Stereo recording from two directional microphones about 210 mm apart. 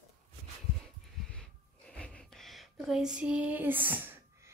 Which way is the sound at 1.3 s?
5° left (ahead or behind).